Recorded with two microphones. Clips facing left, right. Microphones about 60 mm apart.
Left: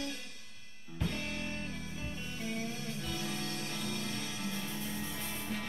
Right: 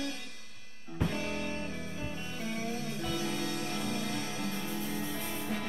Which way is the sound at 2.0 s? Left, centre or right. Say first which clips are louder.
Right 3 dB; centre.